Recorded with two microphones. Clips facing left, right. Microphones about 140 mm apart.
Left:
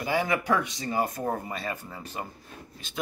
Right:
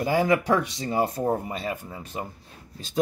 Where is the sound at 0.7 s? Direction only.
25° right (ahead or behind).